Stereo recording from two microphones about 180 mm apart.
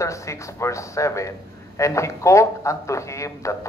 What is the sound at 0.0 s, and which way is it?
Speech, 15° left (ahead or behind).